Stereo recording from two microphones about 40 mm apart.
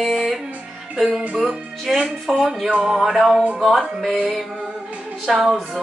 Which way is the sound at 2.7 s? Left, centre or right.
Right.